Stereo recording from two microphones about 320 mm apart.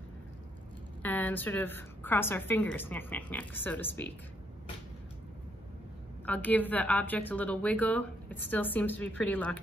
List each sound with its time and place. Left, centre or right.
1.0 s a woman's voice: centre
6.2 s a woman's voice: centre